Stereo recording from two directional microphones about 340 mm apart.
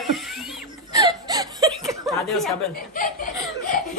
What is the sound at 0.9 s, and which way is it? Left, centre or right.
Whimper, centre.